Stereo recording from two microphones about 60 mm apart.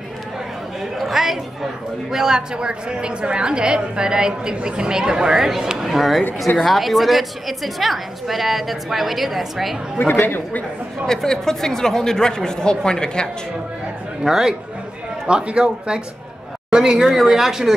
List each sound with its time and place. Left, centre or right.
0.9 s chatter: centre
2.0 s a woman's voice: centre
9.9 s speech: left
11.1 s a woman's voice: centre
14.2 s a woman's voice: centre
15.2 s a woman's voice: centre